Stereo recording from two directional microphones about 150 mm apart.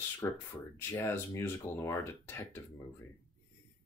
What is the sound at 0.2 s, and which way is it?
Speech, 15° left (ahead or behind).